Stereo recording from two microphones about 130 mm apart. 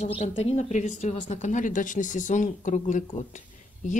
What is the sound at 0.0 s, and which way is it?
Speech, 50° left (ahead or behind).